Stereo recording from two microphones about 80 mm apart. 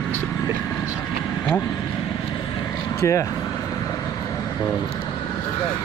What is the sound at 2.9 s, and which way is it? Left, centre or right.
Speech, left.